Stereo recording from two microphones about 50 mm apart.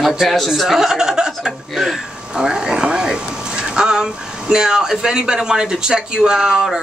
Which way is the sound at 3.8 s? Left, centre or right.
Centre.